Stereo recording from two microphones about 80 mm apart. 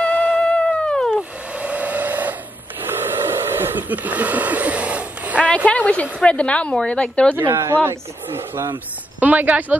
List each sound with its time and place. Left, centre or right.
0.0 s music: centre
0.4 s a sound: centre
1.1 s hair dryer: centre
2.8 s a sound: right
5.7 s a woman's voice: centre
7.3 s speech: right
9.2 s speech: centre